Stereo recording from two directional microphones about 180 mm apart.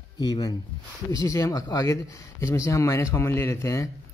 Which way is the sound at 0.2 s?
20° left (ahead or behind).